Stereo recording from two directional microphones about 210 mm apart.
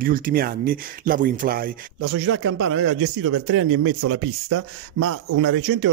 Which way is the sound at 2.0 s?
70° right (ahead or behind).